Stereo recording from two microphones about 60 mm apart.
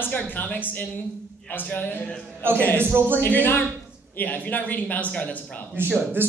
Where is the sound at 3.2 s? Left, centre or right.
Left.